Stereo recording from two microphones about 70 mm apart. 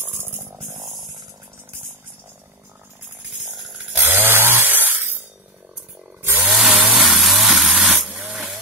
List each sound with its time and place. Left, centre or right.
0.1 s a sound: right
0.7 s chainsaw: centre
3.4 s a sound: centre
3.9 s chainsaw: right
6.3 s chainsaw: centre
7.0 s vehicle: centre
8.3 s hiss: centre